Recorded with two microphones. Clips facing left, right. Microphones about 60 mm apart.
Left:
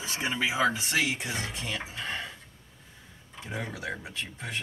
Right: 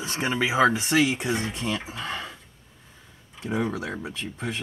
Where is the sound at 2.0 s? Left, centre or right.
Right.